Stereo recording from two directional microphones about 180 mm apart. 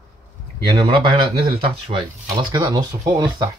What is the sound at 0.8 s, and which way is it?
Speech, 30° right (ahead or behind).